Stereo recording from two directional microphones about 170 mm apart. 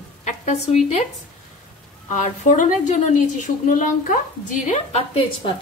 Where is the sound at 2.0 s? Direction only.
45° left (ahead or behind).